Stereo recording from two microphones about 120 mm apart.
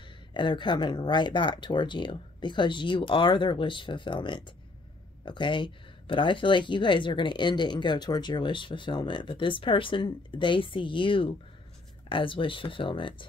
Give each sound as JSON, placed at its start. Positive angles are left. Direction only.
{"t": 0.3, "sound": "speech", "side_deg": 40}